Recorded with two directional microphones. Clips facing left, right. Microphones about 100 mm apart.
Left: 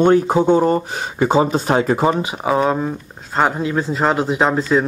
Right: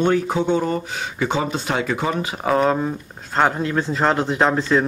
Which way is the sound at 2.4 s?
5° left (ahead or behind).